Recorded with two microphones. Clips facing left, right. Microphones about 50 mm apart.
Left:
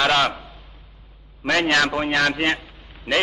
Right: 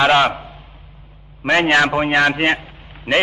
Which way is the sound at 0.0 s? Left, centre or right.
Right.